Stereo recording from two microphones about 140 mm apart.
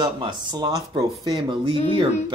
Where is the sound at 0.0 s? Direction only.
35° right (ahead or behind).